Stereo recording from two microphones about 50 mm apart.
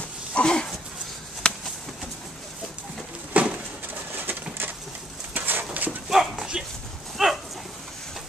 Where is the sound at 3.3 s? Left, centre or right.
Right.